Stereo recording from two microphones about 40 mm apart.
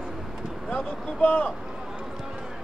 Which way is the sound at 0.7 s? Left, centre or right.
Left.